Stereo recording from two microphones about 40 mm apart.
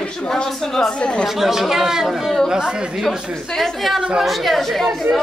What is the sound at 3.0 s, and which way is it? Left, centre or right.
A woman's voice, centre.